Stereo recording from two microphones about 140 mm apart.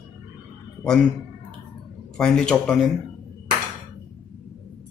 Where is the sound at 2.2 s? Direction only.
5° left (ahead or behind).